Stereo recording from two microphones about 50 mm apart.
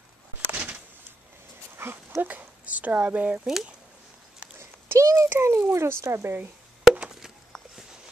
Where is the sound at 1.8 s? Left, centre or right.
Right.